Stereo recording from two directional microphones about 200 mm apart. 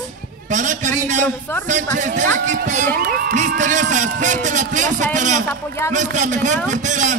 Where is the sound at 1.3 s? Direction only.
10° left (ahead or behind).